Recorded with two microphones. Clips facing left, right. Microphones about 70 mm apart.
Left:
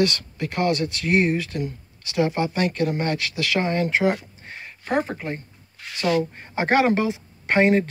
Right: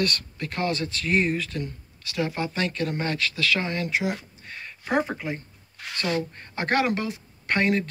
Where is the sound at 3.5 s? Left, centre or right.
Left.